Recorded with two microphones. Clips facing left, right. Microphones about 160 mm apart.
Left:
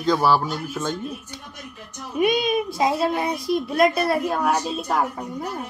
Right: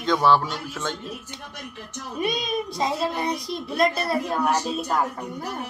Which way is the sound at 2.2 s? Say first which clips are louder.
Left 6 dB; 5° left (ahead or behind).